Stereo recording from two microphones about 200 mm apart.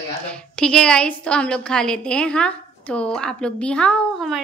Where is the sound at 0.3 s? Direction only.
5° left (ahead or behind).